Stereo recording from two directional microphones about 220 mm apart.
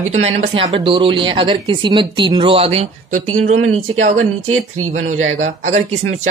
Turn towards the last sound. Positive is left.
turn(degrees=-30)  # may be behind; listen again after turning